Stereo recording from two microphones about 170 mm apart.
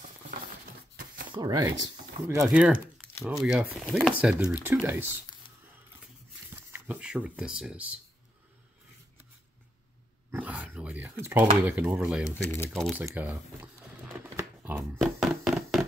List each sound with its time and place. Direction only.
1.3 s speech: 25° right (ahead or behind)
2.5 s speech: 10° right (ahead or behind)
5.4 s a sound: 30° left (ahead or behind)
6.5 s speech: 10° right (ahead or behind)
10.3 s dog: 10° right (ahead or behind)
11.6 s speech: 10° right (ahead or behind)
12.3 s speech: 15° left (ahead or behind)
12.7 s speech: centre (ahead or behind)
13.0 s speech: 10° right (ahead or behind)
14.2 s shuffling cards: 10° right (ahead or behind)
14.8 s a sound: centre (ahead or behind)